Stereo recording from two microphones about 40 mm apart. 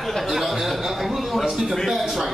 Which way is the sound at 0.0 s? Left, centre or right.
Centre.